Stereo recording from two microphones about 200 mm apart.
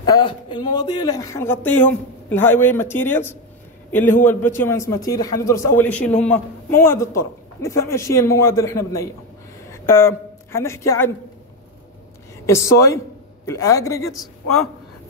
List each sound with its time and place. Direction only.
0.1 s a man's voice: 25° left (ahead or behind)
12.4 s a man's voice: 15° left (ahead or behind)
14.1 s a man's voice: centre (ahead or behind)